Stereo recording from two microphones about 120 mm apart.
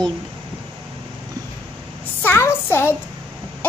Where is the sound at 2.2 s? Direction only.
20° left (ahead or behind).